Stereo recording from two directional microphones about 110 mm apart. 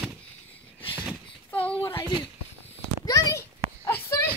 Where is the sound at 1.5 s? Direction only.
15° left (ahead or behind).